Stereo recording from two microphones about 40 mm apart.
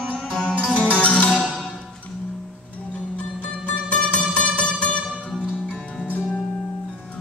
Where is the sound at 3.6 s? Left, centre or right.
Left.